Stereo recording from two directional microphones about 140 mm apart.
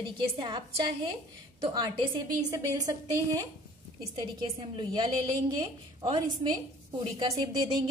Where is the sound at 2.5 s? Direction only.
25° right (ahead or behind).